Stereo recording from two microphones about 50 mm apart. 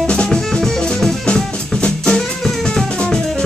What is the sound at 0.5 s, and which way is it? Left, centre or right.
Music, centre.